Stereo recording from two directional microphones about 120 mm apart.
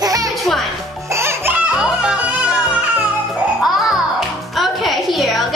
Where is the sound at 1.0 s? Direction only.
20° right (ahead or behind).